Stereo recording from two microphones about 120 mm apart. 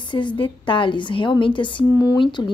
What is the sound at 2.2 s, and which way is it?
Speech, 40° left (ahead or behind).